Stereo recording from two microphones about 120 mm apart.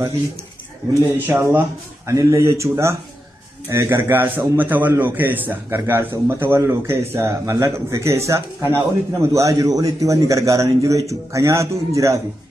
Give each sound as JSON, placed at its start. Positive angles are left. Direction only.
{"t": 1.1, "sound": "a man's voice", "side_deg": -20}